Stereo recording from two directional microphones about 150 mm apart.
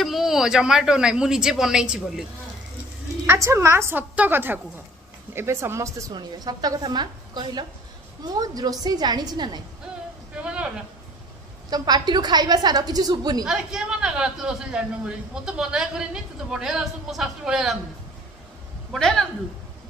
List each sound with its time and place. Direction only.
0.0 s a man's voice: centre (ahead or behind)
3.3 s a woman's voice: 20° right (ahead or behind)
10.3 s speech: 10° right (ahead or behind)
11.7 s a woman's voice: 25° right (ahead or behind)
13.5 s a man's voice: 5° right (ahead or behind)
18.9 s a man's voice: centre (ahead or behind)